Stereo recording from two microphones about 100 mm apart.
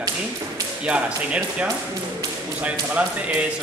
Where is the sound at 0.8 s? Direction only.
10° right (ahead or behind).